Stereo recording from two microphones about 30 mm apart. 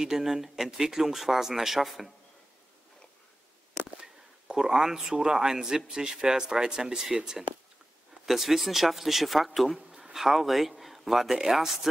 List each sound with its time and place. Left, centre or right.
0.0 s speech: centre
4.6 s a man's voice: right
8.3 s speech: centre